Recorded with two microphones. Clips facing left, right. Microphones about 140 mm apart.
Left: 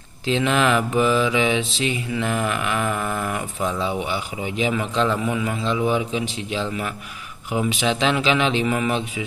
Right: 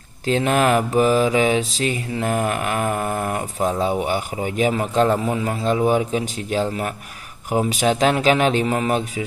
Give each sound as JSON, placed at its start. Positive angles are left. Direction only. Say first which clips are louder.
{"t": 0.3, "sound": "mantra", "louder": "right 2 dB", "side_deg": -45}